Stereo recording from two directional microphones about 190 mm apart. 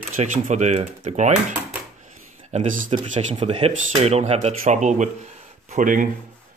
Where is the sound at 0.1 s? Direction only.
40° right (ahead or behind).